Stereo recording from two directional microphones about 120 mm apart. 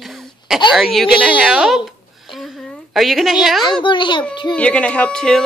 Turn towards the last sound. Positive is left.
turn(degrees=5)  # may be behind; listen again after turning